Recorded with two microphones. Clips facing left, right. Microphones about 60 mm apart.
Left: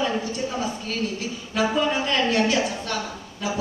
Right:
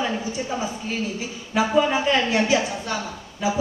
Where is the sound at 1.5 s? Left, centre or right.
Centre.